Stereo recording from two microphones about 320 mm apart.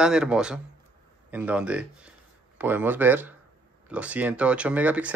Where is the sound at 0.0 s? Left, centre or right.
Centre.